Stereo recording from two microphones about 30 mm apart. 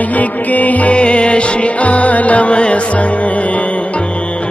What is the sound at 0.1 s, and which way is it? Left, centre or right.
Music, left.